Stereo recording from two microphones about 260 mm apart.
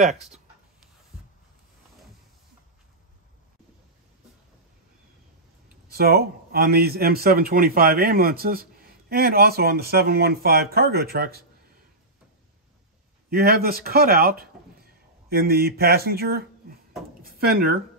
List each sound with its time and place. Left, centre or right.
5.9 s a man's voice: right
13.3 s speech: right